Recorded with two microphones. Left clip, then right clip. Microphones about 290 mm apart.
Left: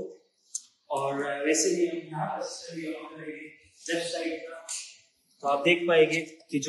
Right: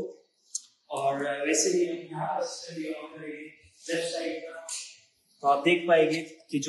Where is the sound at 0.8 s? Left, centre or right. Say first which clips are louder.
Right 1 dB; left.